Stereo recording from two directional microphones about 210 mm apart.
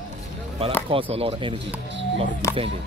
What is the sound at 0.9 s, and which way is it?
Speech, 25° right (ahead or behind).